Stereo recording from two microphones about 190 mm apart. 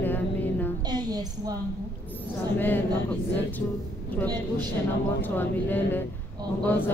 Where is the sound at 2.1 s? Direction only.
10° left (ahead or behind).